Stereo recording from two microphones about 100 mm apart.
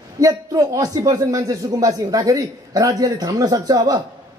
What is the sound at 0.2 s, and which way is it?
Speech, 40° right (ahead or behind).